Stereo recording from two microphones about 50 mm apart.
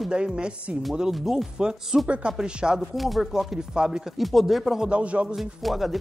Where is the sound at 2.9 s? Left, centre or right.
Centre.